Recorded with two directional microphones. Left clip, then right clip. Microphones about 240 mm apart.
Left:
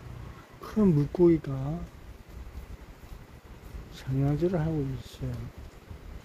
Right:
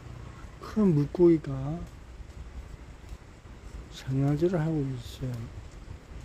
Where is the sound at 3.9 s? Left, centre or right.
Centre.